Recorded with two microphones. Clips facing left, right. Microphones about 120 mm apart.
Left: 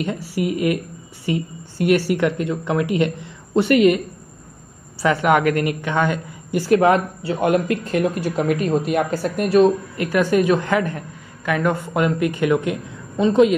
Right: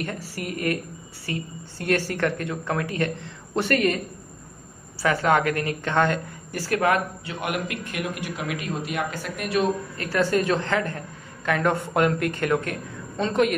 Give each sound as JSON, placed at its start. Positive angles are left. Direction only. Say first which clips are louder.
{"t": 0.0, "sound": "a woman's voice", "louder": "left 8 dB", "side_deg": 15}
{"t": 5.0, "sound": "a woman's voice", "louder": "left 4 dB", "side_deg": 20}
{"t": 9.9, "sound": "a woman's voice", "louder": "left 5 dB", "side_deg": 15}